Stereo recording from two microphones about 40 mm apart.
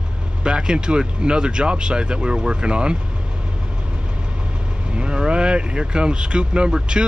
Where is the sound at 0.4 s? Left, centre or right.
Right.